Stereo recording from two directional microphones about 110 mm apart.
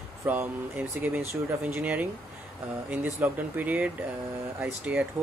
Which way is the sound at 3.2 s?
15° right (ahead or behind).